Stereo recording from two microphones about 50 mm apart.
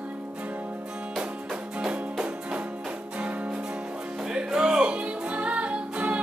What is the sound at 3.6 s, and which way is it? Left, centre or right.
Music, centre.